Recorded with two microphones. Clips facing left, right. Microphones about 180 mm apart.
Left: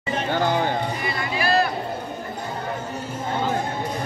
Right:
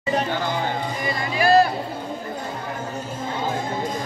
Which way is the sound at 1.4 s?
45° right (ahead or behind).